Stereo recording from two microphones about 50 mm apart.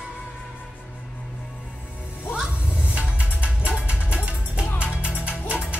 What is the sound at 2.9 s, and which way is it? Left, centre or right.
Music, right.